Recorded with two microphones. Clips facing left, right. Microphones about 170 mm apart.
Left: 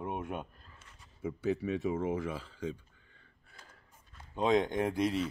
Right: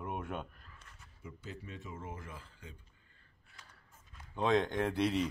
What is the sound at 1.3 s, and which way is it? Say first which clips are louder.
Speech: left 15 dB; 70° left (ahead or behind).